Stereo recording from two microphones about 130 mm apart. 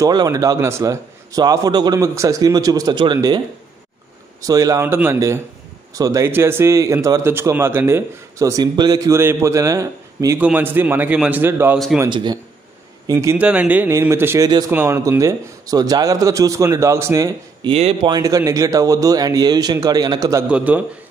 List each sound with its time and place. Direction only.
0.0 s a man's voice: 30° right (ahead or behind)
12.1 s speech: 35° right (ahead or behind)
13.0 s a man's voice: 20° right (ahead or behind)
13.4 s a man's voice: 10° right (ahead or behind)
17.6 s speech: 50° right (ahead or behind)
18.0 s a man's voice: 30° right (ahead or behind)
20.4 s a man's voice: 10° right (ahead or behind)